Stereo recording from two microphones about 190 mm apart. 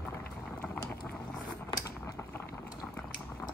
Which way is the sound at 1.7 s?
15° left (ahead or behind).